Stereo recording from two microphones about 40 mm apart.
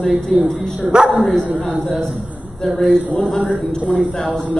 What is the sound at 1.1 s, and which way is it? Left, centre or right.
Speech, centre.